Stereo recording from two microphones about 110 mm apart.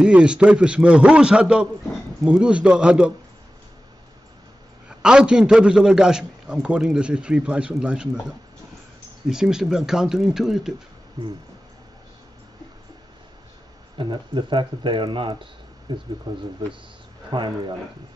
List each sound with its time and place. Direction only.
0.0 s a man's voice: 10° right (ahead or behind)
4.8 s a man's voice: 10° right (ahead or behind)
9.3 s speech: 5° right (ahead or behind)
13.9 s speech: 45° right (ahead or behind)
15.9 s speech: 35° right (ahead or behind)